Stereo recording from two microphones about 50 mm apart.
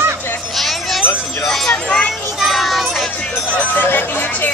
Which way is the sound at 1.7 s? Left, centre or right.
Centre.